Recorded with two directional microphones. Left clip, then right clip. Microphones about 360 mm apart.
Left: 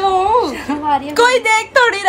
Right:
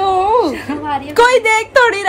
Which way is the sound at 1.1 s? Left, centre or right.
Centre.